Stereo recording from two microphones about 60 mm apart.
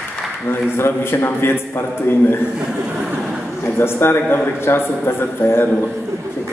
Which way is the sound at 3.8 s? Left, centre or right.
Left.